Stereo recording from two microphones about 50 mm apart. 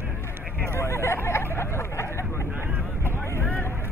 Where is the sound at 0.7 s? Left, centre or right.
Left.